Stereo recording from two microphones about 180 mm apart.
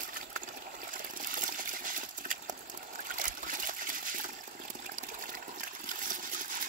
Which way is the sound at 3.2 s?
50° right (ahead or behind).